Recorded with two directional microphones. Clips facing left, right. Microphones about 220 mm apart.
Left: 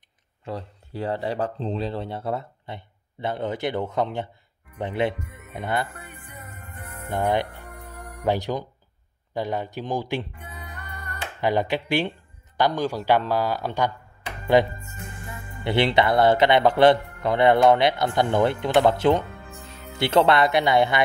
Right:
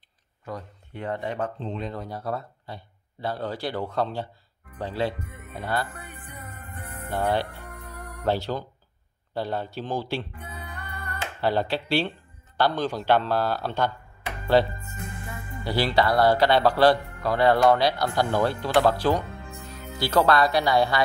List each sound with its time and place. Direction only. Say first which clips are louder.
0.5 s speech: left 3 dB; 30° left (ahead or behind)
6.6 s music: right 1 dB; 35° right (ahead or behind)
7.1 s speech: left 2 dB; 20° left (ahead or behind)
11.4 s speech: left 2 dB; 15° left (ahead or behind)